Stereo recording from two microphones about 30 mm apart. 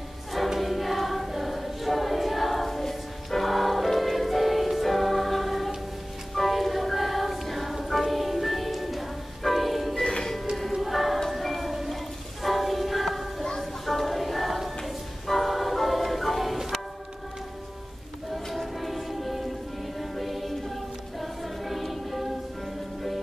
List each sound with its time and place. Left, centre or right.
0.6 s choir: centre
6.3 s music: centre
10.0 s music: left
10.7 s choir: centre
11.2 s music: centre
13.6 s a sound: centre
15.2 s music: centre
18.8 s music: centre
21.2 s choir: centre